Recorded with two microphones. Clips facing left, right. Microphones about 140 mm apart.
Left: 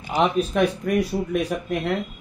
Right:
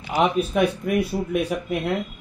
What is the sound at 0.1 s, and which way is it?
A man's voice, 10° right (ahead or behind).